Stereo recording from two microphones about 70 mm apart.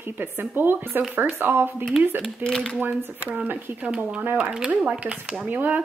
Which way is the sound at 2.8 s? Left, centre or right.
Right.